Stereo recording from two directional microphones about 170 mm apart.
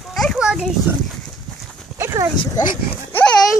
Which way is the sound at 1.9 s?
20° right (ahead or behind).